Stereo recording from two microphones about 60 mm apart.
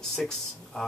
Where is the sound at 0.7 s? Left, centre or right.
Centre.